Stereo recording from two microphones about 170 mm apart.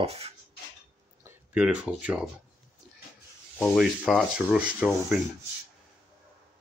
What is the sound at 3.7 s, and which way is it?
Speech, centre (ahead or behind).